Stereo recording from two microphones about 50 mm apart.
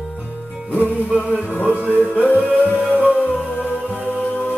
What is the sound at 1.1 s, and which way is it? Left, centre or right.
Music, left.